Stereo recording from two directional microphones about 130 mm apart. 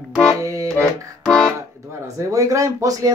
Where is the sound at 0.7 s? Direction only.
5° left (ahead or behind).